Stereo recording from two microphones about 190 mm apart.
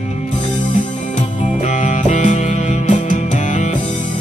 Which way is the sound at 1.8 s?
40° left (ahead or behind).